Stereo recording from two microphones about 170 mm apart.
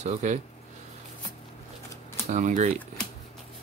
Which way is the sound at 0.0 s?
45° right (ahead or behind).